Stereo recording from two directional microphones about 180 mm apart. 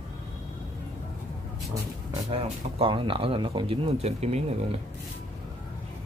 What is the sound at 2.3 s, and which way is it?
Speech, 30° right (ahead or behind).